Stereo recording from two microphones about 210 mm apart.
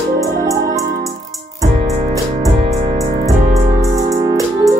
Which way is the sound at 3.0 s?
15° right (ahead or behind).